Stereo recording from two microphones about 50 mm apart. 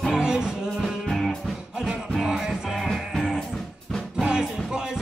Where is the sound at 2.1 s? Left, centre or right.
Centre.